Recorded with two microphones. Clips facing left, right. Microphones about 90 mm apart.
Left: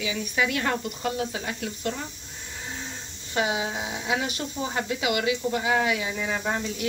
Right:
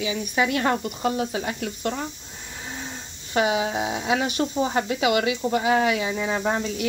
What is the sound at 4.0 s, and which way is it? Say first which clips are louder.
Speech: right 4 dB; 40° right (ahead or behind).